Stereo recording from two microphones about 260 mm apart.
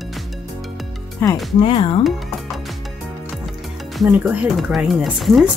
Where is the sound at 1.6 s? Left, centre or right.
Left.